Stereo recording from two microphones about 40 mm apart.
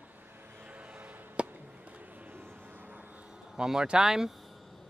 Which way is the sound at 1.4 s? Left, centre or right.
Right.